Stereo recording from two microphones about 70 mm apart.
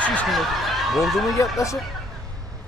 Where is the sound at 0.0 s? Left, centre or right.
Centre.